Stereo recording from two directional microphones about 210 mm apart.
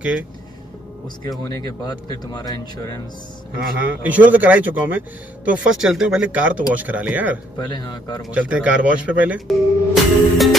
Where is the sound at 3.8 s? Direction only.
5° right (ahead or behind).